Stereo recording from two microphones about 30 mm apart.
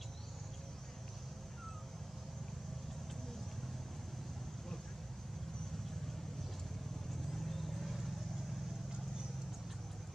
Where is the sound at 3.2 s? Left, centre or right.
Centre.